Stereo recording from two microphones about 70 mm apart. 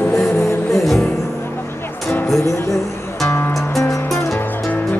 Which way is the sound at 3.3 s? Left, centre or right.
Left.